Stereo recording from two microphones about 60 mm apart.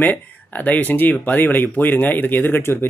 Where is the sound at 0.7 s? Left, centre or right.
Left.